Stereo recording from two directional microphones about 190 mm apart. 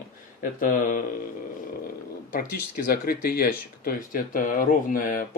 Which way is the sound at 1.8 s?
50° left (ahead or behind).